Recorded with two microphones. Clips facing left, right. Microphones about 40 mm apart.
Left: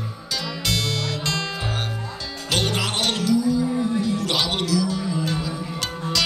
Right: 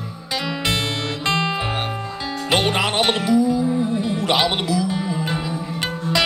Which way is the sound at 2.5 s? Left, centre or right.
Right.